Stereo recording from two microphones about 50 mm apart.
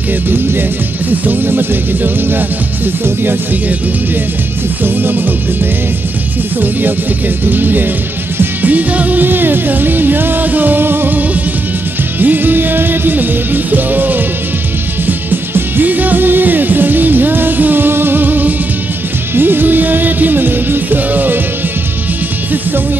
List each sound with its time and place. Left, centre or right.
1.2 s music: right
4.8 s music: right
7.4 s music: right